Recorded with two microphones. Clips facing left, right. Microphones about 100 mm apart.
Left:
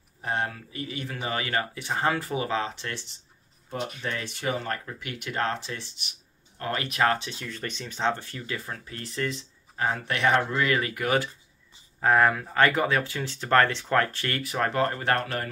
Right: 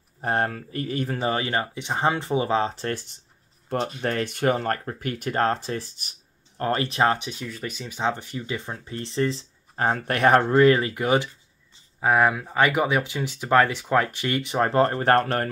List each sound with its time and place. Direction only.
0.2 s speech: 50° right (ahead or behind)
1.1 s speech: 30° right (ahead or behind)
12.0 s speech: 10° right (ahead or behind); by 15.5 s 45° right (ahead or behind)